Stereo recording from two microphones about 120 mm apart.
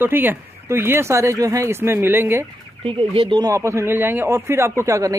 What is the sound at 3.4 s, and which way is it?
Speech, 25° right (ahead or behind).